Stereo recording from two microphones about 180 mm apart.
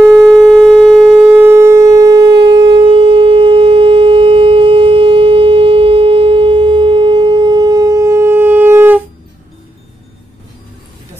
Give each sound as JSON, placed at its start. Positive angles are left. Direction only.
{"t": 0.0, "sound": "shofar", "side_deg": 0}